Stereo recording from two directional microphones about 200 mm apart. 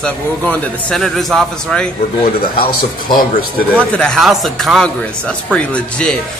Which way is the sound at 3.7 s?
5° left (ahead or behind).